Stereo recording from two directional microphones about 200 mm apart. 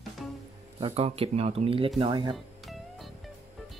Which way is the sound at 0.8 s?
30° right (ahead or behind).